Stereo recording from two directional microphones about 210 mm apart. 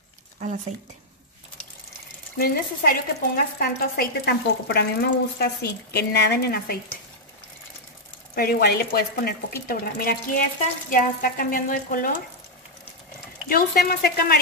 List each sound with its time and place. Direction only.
2.3 s speech: 45° left (ahead or behind)
8.4 s speech: 45° left (ahead or behind)
13.5 s speech: 45° left (ahead or behind)